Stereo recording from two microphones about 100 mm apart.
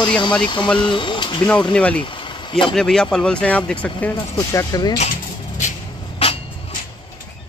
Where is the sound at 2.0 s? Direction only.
55° left (ahead or behind).